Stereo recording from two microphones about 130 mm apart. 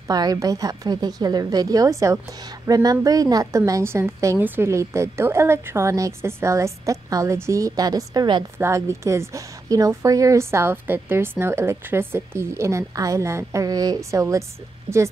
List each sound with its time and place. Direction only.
0.1 s a woman's voice: 30° right (ahead or behind)
8.5 s a woman's voice: 20° right (ahead or behind)